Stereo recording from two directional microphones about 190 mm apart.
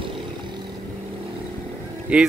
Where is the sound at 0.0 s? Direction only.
25° right (ahead or behind).